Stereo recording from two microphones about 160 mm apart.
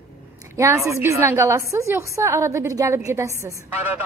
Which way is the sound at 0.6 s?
20° right (ahead or behind).